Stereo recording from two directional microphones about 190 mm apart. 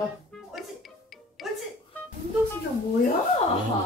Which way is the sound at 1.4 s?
Centre (ahead or behind).